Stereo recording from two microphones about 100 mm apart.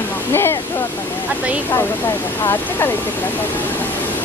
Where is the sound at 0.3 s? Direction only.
25° left (ahead or behind).